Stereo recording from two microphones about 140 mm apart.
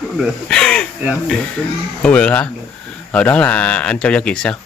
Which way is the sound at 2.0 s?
10° left (ahead or behind).